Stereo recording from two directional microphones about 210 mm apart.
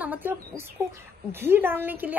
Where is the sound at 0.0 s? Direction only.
10° right (ahead or behind).